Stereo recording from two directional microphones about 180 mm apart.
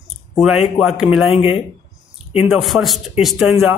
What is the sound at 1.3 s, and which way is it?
Speech, 30° left (ahead or behind).